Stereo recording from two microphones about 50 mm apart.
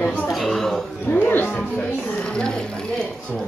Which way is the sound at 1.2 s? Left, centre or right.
Left.